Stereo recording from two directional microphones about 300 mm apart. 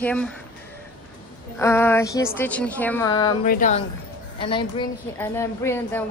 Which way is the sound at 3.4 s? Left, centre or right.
Left.